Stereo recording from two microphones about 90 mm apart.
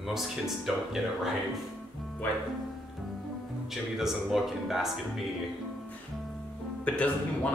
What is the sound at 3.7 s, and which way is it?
Speech, 5° right (ahead or behind).